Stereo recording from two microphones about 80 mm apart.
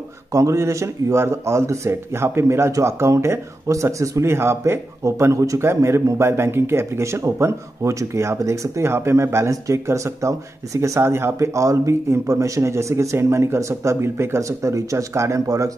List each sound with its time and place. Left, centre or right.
0.3 s speech: right